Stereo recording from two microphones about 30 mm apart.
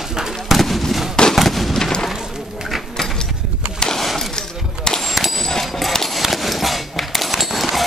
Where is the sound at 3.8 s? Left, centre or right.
Left.